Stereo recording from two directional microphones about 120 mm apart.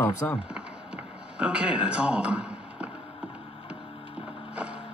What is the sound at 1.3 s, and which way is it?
Speech, 10° right (ahead or behind).